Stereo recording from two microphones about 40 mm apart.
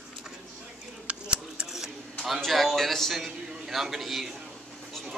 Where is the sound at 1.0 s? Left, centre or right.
Right.